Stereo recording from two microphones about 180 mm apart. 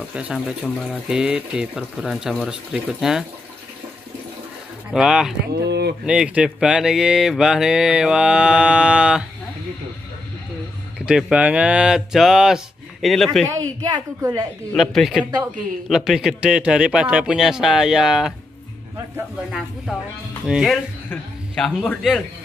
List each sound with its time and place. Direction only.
0.1 s speech: 5° right (ahead or behind)
4.9 s speech: 5° right (ahead or behind)
5.5 s speech: 65° right (ahead or behind)
6.0 s speech: 5° right (ahead or behind)
11.0 s speech: 5° right (ahead or behind)
13.5 s a woman's voice: 20° right (ahead or behind)
14.7 s a man's voice: centre (ahead or behind)